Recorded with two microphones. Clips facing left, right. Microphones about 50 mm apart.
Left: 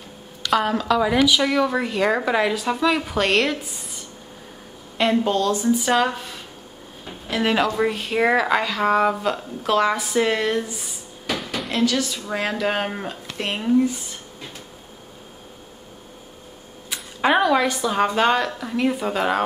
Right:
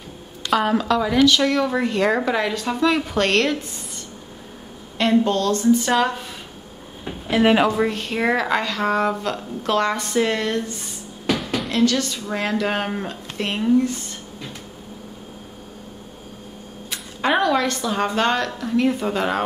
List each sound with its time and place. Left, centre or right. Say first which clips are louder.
0.5 s speech: right 1 dB; centre
4.9 s speech: right 1 dB; centre
7.1 s speech: right 5 dB; centre
7.7 s speech: even; centre
16.9 s speech: left 1 dB; centre